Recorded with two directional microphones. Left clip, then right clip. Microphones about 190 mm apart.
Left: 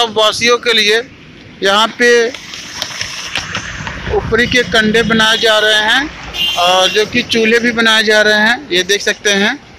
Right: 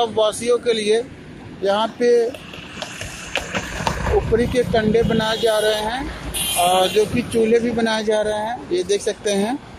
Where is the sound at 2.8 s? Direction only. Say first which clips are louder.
Left 10 dB; 55° right (ahead or behind).